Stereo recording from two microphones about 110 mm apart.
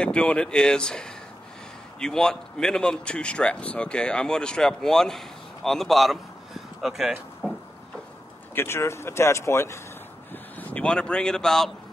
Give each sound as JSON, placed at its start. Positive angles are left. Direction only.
{"t": 0.0, "sound": "speech", "side_deg": 10}
{"t": 8.5, "sound": "speech", "side_deg": 25}
{"t": 10.3, "sound": "a sound", "side_deg": 15}